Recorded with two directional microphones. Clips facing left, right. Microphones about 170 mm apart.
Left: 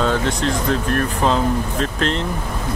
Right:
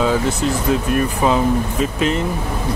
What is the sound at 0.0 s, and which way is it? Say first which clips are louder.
Speech: right 2 dB; 5° right (ahead or behind).